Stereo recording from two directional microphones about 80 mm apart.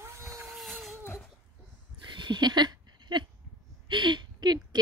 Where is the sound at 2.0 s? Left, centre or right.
Right.